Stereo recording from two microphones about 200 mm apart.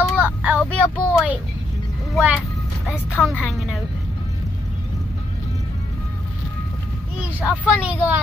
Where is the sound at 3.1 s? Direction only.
10° left (ahead or behind).